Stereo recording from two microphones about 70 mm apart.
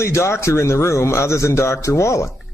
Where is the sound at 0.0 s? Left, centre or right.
Left.